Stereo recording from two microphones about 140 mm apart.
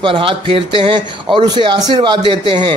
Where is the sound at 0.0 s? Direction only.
40° right (ahead or behind).